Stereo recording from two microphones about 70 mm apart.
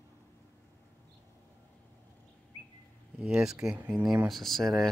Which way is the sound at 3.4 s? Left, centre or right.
Centre.